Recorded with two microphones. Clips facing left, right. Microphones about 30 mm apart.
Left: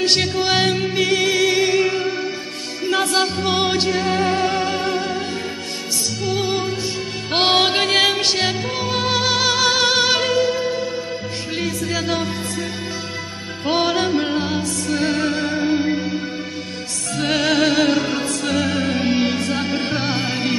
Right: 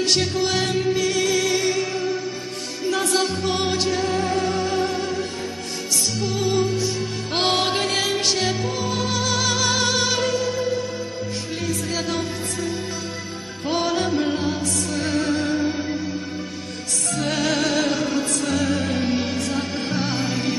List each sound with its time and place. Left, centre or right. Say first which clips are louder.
0.0 s music: left 3 dB; left
6.3 s music: even; left
12.1 s music: left 3 dB; left
13.7 s music: left 4 dB; left
17.1 s music: left 4 dB; left